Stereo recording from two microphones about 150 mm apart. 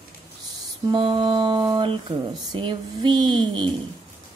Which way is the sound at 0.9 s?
30° right (ahead or behind).